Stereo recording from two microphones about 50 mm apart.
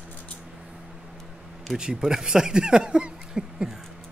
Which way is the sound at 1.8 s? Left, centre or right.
Centre.